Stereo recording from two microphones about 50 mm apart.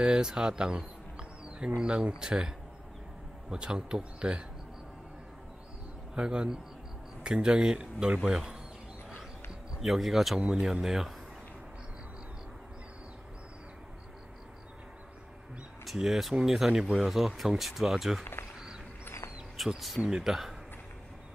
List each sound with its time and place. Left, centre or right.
0.0 s speech: centre
6.1 s speech: centre
9.8 s speech: centre
16.0 s speech: centre
19.5 s speech: centre